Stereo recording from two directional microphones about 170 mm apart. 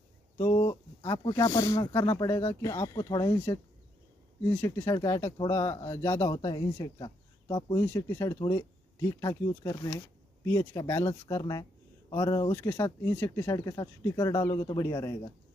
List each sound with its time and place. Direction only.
0.4 s speech: 25° left (ahead or behind)
7.8 s speech: 15° left (ahead or behind)